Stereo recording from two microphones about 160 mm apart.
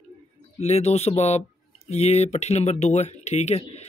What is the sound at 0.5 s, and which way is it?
Speech, 40° left (ahead or behind).